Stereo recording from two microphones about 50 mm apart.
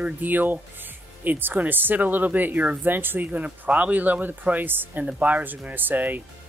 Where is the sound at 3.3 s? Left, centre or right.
Right.